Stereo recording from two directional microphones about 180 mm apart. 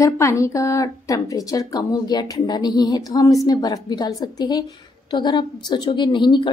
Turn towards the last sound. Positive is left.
turn(degrees=25)  # may be behind; listen again after turning